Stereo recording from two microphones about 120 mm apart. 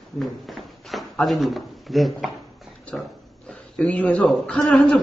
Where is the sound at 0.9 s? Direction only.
Centre (ahead or behind).